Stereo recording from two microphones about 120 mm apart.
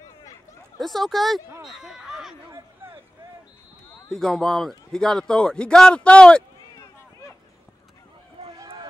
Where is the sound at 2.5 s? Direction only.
20° right (ahead or behind).